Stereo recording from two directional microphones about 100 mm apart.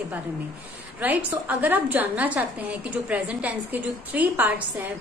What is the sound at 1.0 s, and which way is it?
A woman's voice, 15° right (ahead or behind).